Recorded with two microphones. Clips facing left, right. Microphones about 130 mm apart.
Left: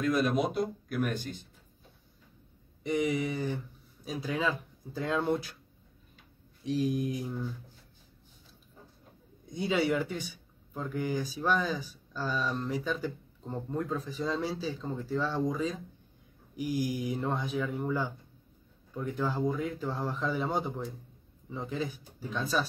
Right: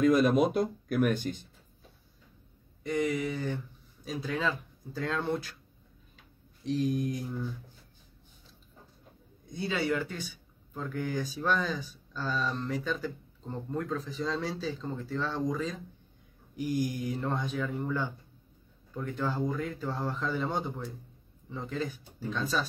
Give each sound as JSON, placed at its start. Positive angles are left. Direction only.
{"t": 0.0, "sound": "speech", "side_deg": -50}
{"t": 2.9, "sound": "speech", "side_deg": 15}
{"t": 6.6, "sound": "mantra", "side_deg": 5}
{"t": 9.5, "sound": "speech", "side_deg": 15}